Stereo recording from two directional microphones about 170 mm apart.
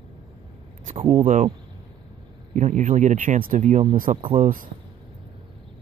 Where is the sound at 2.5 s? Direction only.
45° right (ahead or behind).